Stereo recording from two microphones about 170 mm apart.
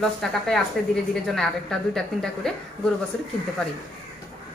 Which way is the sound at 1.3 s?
5° left (ahead or behind).